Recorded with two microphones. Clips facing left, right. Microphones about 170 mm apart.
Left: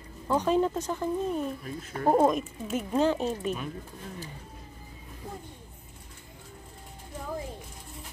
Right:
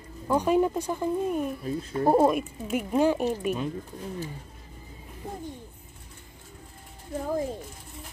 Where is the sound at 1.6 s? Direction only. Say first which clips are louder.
Right 7 dB; 30° right (ahead or behind).